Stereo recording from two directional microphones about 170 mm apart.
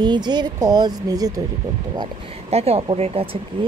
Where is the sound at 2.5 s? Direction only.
35° right (ahead or behind).